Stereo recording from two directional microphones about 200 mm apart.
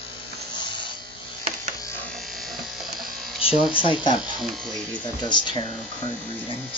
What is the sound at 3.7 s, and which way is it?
Speech, 25° left (ahead or behind).